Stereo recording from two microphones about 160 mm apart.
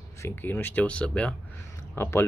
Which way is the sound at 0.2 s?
10° left (ahead or behind).